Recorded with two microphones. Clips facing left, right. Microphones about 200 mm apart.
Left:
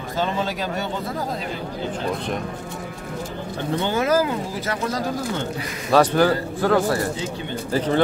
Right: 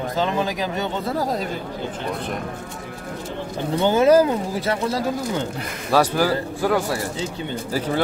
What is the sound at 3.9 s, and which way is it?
Speech, 25° right (ahead or behind).